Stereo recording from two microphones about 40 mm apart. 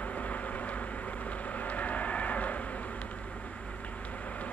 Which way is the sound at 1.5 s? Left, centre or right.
Left.